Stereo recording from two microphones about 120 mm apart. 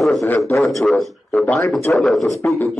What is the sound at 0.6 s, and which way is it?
A man's voice, centre (ahead or behind).